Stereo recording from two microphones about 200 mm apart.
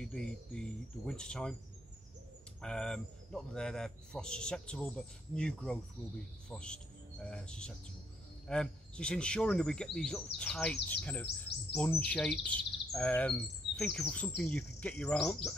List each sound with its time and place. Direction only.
0.0 s speech: 5° left (ahead or behind)
2.6 s speech: 5° left (ahead or behind)